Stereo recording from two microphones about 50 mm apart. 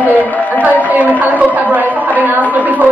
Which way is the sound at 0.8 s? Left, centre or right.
Right.